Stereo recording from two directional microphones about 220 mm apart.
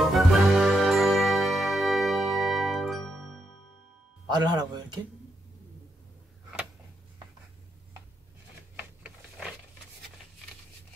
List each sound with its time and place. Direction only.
0.1 s ding: centre (ahead or behind)
4.3 s speech: 20° right (ahead or behind)
8.7 s a sound: 5° right (ahead or behind)